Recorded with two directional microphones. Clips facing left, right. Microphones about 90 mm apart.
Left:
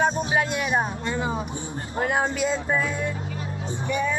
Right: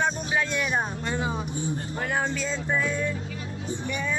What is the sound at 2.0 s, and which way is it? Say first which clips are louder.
Music: left 6 dB; 40° left (ahead or behind).